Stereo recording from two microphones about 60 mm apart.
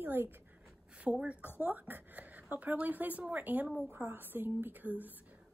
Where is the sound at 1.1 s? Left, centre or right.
Centre.